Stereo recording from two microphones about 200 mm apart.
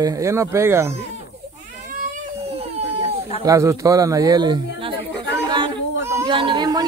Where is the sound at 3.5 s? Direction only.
15° right (ahead or behind).